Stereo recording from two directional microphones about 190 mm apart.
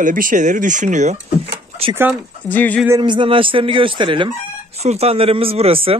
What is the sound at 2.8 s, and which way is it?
Speech, 20° right (ahead or behind).